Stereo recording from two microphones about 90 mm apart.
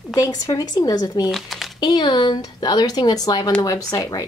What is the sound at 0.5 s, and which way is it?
Speech, 45° left (ahead or behind).